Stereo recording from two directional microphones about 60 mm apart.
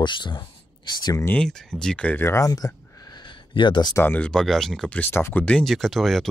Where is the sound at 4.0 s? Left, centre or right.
Left.